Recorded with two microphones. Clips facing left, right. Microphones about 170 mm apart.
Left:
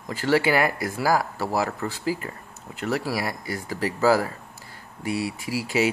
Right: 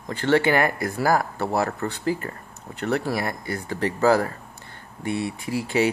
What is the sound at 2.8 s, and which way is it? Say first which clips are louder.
Speech: right 2 dB; 5° left (ahead or behind).